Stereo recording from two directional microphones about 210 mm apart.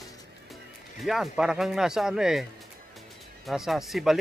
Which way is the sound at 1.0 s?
Centre (ahead or behind).